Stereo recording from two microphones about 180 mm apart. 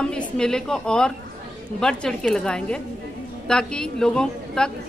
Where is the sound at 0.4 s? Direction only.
5° left (ahead or behind).